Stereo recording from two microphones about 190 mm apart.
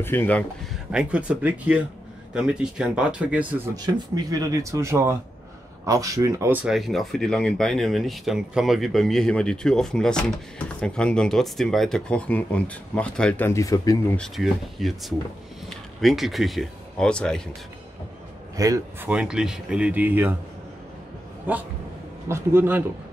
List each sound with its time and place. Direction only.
0.0 s speech: 10° left (ahead or behind)
0.9 s speech: 5° right (ahead or behind)
3.7 s speech: 20° right (ahead or behind); by 14.1 s 15° left (ahead or behind)
14.1 s speech: centre (ahead or behind)
18.6 s speech: 15° right (ahead or behind)
22.3 s speech: 10° right (ahead or behind)